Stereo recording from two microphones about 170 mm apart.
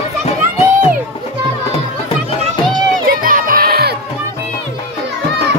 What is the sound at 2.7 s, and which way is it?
Crowd, 55° right (ahead or behind).